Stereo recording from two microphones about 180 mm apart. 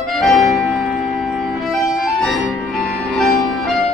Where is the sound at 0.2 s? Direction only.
Centre (ahead or behind).